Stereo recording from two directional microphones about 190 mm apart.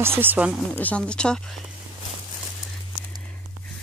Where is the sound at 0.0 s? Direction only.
10° right (ahead or behind).